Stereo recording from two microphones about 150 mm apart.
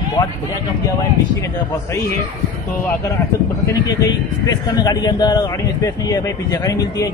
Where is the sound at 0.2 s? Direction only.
30° left (ahead or behind).